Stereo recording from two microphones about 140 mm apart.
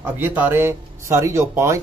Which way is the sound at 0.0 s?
15° right (ahead or behind).